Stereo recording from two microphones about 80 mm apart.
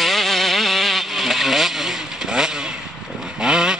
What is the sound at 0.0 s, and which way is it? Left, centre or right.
Vehicle, centre.